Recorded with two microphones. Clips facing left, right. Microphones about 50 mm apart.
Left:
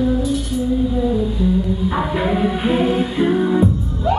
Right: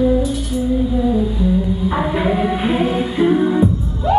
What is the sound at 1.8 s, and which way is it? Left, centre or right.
Music, centre.